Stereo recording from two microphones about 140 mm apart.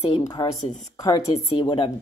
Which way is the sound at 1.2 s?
45° left (ahead or behind).